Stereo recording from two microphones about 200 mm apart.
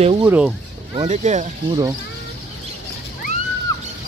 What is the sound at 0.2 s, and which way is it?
Speech, 10° right (ahead or behind).